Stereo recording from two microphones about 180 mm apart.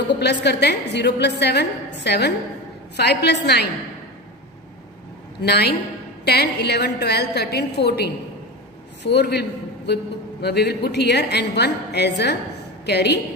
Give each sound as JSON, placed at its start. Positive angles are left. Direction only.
{"t": 0.2, "sound": "a woman's voice", "side_deg": 70}
{"t": 5.4, "sound": "a woman's voice", "side_deg": 65}